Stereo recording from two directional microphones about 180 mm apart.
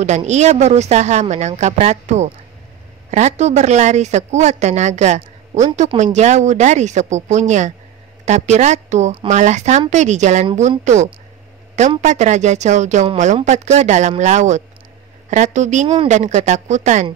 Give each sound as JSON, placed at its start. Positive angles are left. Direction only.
{"t": 0.0, "sound": "a woman's voice", "side_deg": -40}